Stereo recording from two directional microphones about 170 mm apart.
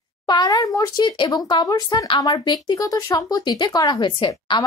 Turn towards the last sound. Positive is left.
turn(degrees=25)  # may be behind; listen again after turning